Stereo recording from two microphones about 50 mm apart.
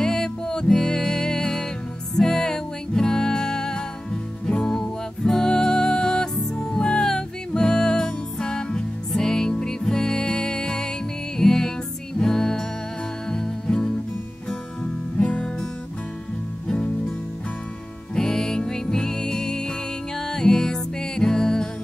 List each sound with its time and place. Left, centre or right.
0.0 s music: centre
15.1 s music: left
16.6 s music: centre
18.1 s music: centre